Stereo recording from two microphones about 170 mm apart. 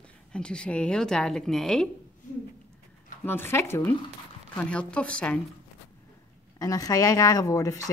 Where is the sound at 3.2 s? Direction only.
10° left (ahead or behind).